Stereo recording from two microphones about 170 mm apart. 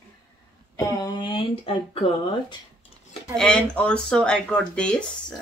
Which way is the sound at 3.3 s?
5° left (ahead or behind).